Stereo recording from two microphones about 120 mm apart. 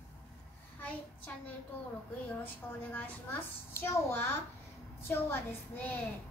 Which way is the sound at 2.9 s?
20° left (ahead or behind).